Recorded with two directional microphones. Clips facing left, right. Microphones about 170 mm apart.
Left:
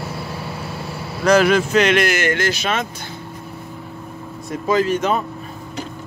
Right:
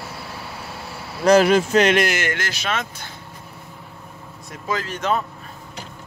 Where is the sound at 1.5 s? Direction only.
40° right (ahead or behind).